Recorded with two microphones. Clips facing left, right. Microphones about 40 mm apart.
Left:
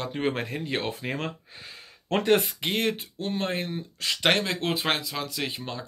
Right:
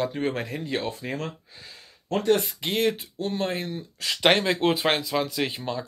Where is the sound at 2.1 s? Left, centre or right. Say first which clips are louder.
Even; left.